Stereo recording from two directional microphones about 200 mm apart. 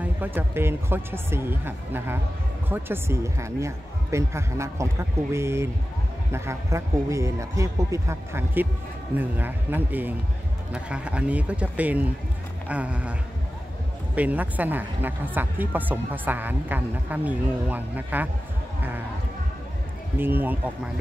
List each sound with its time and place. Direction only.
0.0 s a woman's voice: 10° right (ahead or behind)
14.1 s a woman's voice: 5° right (ahead or behind)
20.2 s a woman's voice: 10° right (ahead or behind)